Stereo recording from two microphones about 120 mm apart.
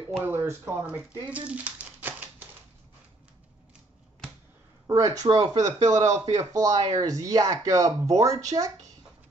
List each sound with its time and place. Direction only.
0.2 s speech: 20° right (ahead or behind)
4.8 s speech: 30° right (ahead or behind)